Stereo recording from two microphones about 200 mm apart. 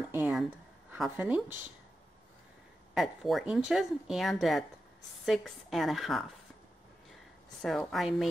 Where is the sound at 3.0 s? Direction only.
Centre (ahead or behind).